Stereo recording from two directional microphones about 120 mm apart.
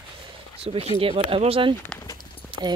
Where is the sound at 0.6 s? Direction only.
50° right (ahead or behind).